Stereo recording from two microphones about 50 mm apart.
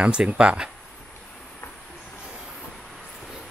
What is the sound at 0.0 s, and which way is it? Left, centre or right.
Speech, right.